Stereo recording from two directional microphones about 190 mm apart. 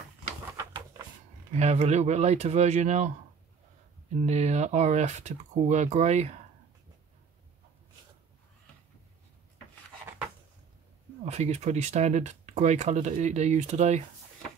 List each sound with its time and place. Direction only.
0.6 s a sound: 20° right (ahead or behind)
1.5 s speech: 35° right (ahead or behind)
4.3 s speech: 35° right (ahead or behind)
11.2 s speech: 35° right (ahead or behind)